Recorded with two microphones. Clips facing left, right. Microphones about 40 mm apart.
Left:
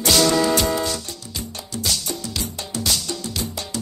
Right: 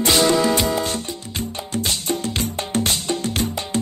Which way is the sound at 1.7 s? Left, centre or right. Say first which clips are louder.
Right 3 dB; right.